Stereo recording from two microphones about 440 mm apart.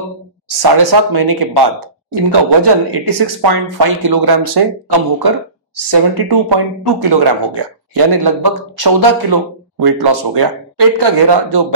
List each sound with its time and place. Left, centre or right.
0.6 s speech: right
3.1 s speech: right